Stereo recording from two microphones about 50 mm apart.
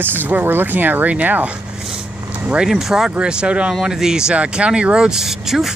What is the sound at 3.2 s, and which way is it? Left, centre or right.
Speech, centre.